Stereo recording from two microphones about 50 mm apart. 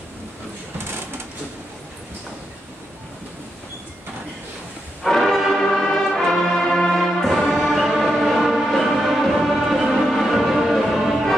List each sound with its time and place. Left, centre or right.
5.0 s music: centre